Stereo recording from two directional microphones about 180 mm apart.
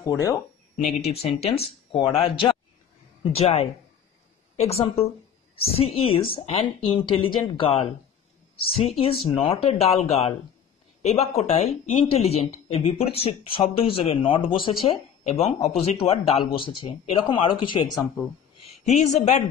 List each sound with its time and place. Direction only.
0.8 s speech: 35° left (ahead or behind)
18.9 s speech: 40° left (ahead or behind)